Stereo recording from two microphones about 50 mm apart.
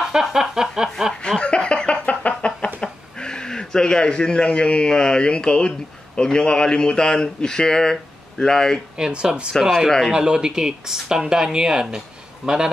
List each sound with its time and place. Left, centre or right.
0.1 s a sound: centre
1.4 s chicken: left
8.9 s speech: centre
9.5 s a man's voice: centre
10.1 s speech: centre